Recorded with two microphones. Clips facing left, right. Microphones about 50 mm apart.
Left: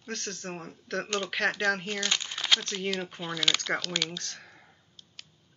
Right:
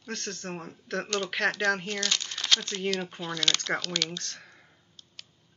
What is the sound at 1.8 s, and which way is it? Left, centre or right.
Speech, centre.